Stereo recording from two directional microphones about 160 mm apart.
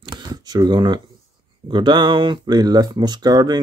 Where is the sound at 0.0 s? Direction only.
25° right (ahead or behind).